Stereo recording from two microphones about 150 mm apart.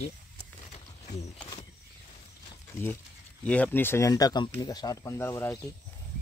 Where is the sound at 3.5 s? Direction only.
10° left (ahead or behind).